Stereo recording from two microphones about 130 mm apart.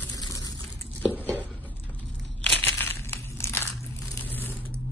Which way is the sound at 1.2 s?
15° left (ahead or behind).